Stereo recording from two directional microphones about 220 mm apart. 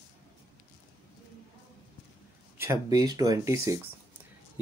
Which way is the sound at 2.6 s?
15° right (ahead or behind).